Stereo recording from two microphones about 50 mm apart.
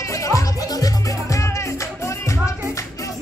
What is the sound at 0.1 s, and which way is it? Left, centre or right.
Music, left.